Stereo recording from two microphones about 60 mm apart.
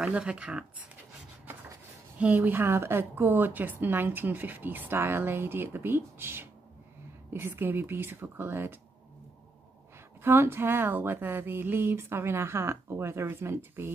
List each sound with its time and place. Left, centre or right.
0.0 s speech: centre
2.1 s a woman's voice: right
10.2 s a woman's voice: right